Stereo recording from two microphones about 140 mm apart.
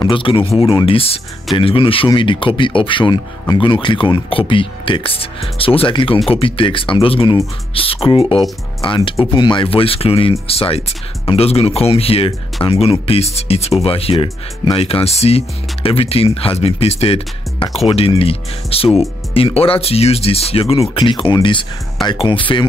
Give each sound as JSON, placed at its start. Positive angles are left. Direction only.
{"t": 0.1, "sound": "speech", "side_deg": 40}